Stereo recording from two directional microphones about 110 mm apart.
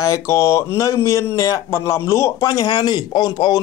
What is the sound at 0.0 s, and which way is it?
A man's voice, 30° left (ahead or behind).